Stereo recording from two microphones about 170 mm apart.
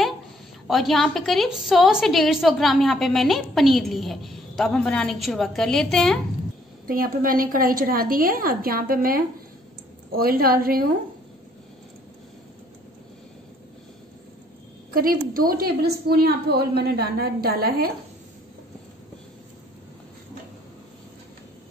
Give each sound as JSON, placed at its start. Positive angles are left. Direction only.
{"t": 0.7, "sound": "a woman's voice", "side_deg": 0}
{"t": 6.9, "sound": "a woman's voice", "side_deg": -55}
{"t": 15.0, "sound": "a woman's voice", "side_deg": -60}